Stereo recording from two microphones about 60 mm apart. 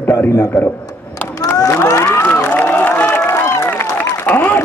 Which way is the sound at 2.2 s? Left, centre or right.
Left.